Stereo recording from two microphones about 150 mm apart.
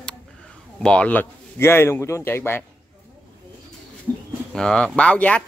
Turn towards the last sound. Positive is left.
turn(degrees=10)  # may be behind; listen again after turning